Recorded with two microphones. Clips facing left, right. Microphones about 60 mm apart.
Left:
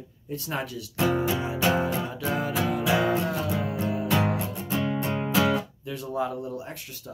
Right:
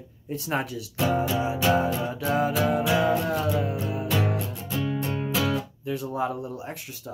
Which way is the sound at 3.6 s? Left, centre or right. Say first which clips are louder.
Even; left.